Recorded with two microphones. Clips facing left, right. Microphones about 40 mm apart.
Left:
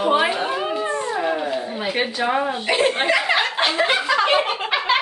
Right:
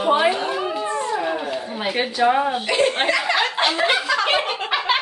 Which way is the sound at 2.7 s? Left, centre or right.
Centre.